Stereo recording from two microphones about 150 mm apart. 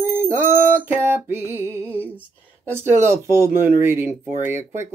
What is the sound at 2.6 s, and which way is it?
Speech, 15° right (ahead or behind).